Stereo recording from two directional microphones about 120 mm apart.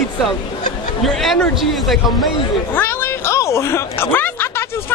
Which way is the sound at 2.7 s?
15° left (ahead or behind).